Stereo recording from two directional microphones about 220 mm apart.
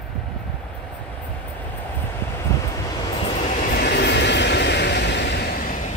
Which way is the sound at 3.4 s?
35° left (ahead or behind).